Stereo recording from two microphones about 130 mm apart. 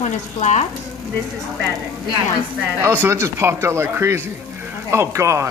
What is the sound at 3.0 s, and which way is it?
A child's voice, 20° right (ahead or behind).